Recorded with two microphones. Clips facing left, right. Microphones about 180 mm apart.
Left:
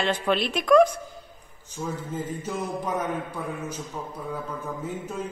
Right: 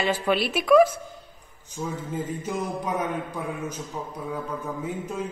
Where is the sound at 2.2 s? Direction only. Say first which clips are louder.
Right 1 dB; 10° right (ahead or behind).